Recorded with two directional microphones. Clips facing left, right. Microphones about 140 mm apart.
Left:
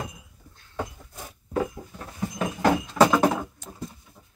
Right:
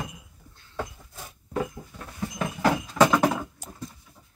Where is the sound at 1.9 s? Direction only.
15° left (ahead or behind).